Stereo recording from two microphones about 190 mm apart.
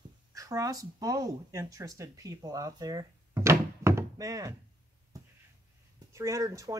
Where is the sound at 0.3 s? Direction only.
20° right (ahead or behind).